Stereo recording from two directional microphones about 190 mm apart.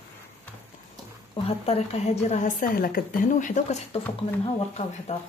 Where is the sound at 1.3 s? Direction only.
30° left (ahead or behind).